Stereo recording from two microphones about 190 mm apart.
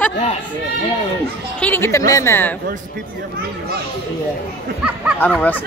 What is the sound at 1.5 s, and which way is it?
Speech, 10° left (ahead or behind).